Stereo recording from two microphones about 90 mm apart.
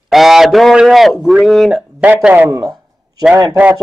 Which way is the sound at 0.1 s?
5° right (ahead or behind).